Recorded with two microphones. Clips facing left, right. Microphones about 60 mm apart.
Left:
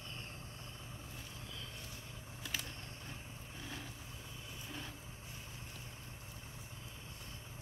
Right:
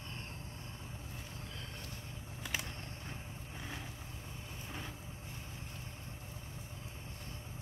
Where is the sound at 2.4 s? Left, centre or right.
Right.